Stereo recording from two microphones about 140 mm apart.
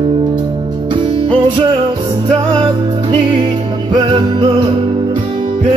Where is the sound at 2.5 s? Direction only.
40° right (ahead or behind).